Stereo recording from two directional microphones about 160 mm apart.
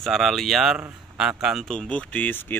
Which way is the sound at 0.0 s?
Centre (ahead or behind).